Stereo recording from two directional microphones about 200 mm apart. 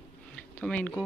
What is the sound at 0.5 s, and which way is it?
Speech, 5° left (ahead or behind).